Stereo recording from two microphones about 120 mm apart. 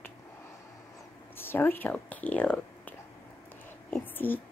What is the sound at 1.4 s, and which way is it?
Speech, 15° left (ahead or behind).